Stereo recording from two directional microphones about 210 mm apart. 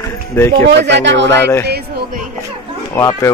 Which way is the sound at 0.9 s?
60° right (ahead or behind).